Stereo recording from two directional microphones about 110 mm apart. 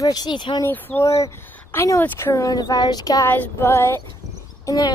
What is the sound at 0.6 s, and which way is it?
Speech, 20° left (ahead or behind).